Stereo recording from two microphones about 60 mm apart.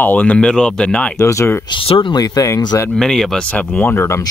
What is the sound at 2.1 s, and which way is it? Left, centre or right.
Speech, left.